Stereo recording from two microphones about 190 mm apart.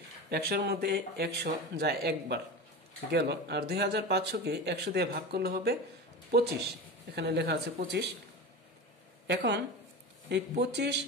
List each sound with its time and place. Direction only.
0.3 s speech: 55° right (ahead or behind)
7.2 s speech: 60° right (ahead or behind)
9.3 s speech: 65° right (ahead or behind)
10.6 s speech: 60° right (ahead or behind)